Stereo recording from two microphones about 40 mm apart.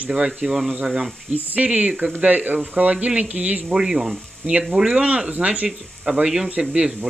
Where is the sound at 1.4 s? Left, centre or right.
Right.